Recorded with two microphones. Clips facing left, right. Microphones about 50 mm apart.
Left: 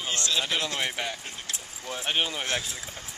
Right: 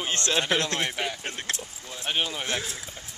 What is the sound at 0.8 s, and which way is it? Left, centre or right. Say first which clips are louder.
Speech: right 2 dB; centre.